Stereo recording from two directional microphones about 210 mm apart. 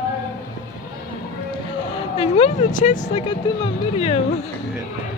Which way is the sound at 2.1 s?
30° left (ahead or behind).